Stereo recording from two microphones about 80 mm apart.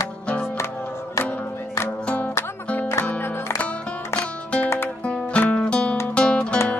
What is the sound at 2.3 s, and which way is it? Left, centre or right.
Music, left.